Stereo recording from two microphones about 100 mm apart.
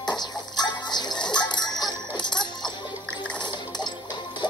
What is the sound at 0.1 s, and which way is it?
Music, 45° left (ahead or behind).